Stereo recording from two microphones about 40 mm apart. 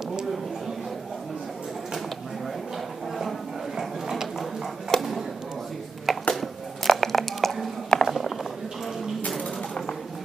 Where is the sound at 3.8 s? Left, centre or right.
Centre.